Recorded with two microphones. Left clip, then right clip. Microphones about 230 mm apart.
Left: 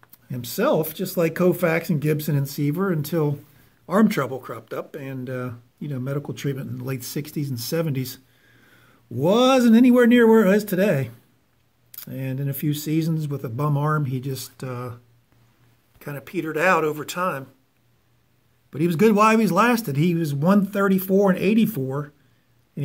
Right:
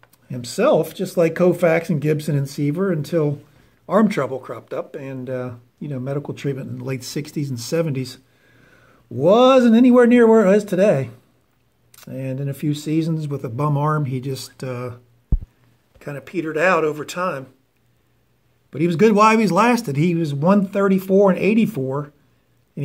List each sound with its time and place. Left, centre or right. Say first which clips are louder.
0.3 s a man's voice: right 5 dB; centre
16.0 s a man's voice: right 3 dB; centre
18.7 s a man's voice: right 3 dB; centre